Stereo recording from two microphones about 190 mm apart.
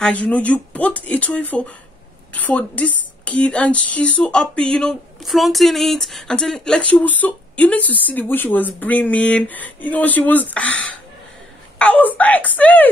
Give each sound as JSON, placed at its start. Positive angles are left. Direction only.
{"t": 0.0, "sound": "speech", "side_deg": 5}
{"t": 11.8, "sound": "speech", "side_deg": 10}